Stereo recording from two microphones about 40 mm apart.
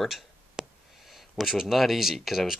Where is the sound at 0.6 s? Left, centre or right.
Centre.